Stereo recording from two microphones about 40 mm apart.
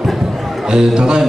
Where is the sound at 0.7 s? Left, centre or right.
Centre.